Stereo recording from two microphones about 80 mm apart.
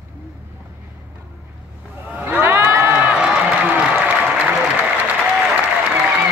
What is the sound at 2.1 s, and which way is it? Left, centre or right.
Crowd, right.